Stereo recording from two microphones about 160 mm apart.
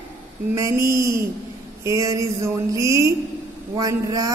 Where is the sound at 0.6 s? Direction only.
20° right (ahead or behind).